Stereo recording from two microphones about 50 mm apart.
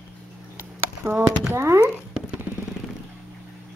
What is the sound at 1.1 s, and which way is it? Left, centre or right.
Speech, right.